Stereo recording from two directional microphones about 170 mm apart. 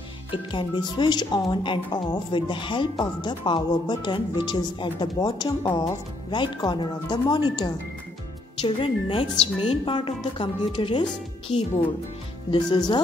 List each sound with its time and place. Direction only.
0.3 s speech: 30° left (ahead or behind)
12.4 s speech: 25° left (ahead or behind)